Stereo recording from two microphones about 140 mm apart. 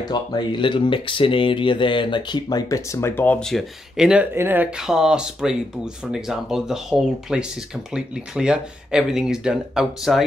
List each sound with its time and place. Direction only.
0.0 s speech: 30° left (ahead or behind); by 10.2 s 5° right (ahead or behind)